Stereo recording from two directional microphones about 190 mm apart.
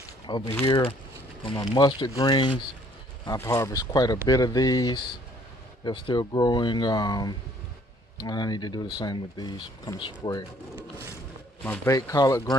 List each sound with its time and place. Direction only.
0.3 s speech: 20° left (ahead or behind)